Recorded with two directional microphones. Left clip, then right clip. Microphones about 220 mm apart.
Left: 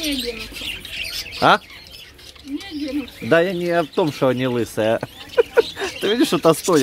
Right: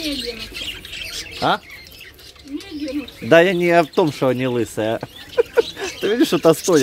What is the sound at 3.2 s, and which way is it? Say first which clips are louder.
Speech: right 5 dB; 15° right (ahead or behind).